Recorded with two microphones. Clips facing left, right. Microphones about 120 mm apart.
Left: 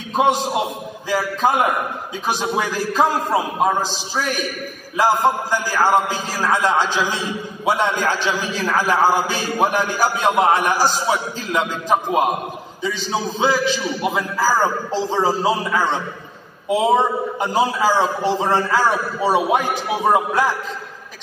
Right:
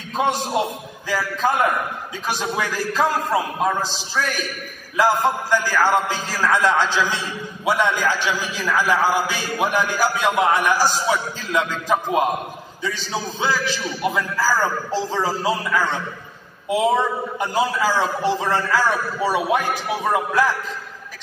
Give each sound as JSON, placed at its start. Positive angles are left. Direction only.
{"t": 0.1, "sound": "a man's voice", "side_deg": 15}
{"t": 8.8, "sound": "a man's voice", "side_deg": 20}
{"t": 9.8, "sound": "a man's voice", "side_deg": 20}